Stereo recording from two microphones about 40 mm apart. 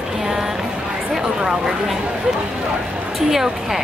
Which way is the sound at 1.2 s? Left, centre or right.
Centre.